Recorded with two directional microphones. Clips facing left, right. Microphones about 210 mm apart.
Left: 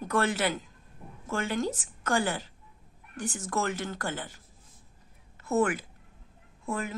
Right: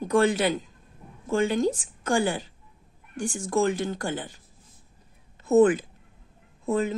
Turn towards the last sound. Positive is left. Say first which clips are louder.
# right 8 dB
turn(degrees=-20)  # may be behind; listen again after turning